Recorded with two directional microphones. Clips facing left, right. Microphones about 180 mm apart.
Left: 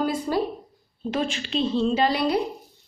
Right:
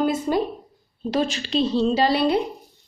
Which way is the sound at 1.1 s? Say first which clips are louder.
Right 4 dB; 40° right (ahead or behind).